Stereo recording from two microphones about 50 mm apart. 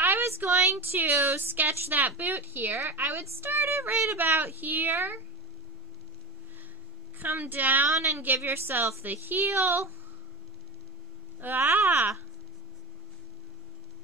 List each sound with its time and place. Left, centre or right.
0.5 s a sound: right
0.7 s speech: right
7.2 s a woman's voice: right
7.9 s a woman's voice: right
8.4 s a woman's voice: right
9.4 s speech: right
11.4 s a woman's voice: right